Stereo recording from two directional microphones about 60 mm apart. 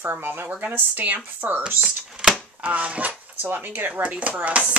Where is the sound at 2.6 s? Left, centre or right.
Right.